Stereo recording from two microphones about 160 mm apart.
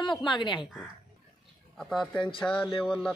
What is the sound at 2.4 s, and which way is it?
Music, 15° left (ahead or behind).